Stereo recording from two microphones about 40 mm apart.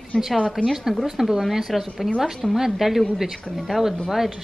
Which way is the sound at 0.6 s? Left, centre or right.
Centre.